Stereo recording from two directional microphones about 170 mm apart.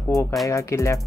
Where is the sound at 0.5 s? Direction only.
15° left (ahead or behind).